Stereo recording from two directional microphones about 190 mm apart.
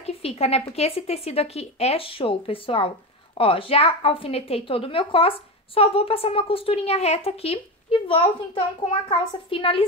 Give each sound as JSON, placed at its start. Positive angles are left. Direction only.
{"t": 0.0, "sound": "a woman's voice", "side_deg": 30}